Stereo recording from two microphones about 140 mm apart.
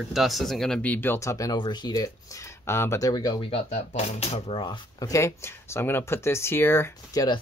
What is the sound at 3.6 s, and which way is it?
Speech, 55° left (ahead or behind).